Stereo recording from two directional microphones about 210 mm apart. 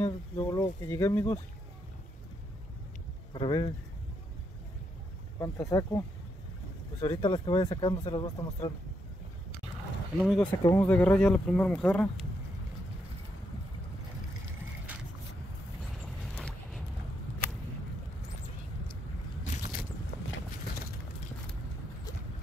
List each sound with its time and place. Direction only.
0.0 s speech: 10° left (ahead or behind)
3.3 s speech: 25° left (ahead or behind)
5.4 s speech: 15° left (ahead or behind)
7.0 s speech: 25° left (ahead or behind)
10.2 s speech: centre (ahead or behind)
10.6 s speech: 10° left (ahead or behind)
15.8 s vehicle: centre (ahead or behind)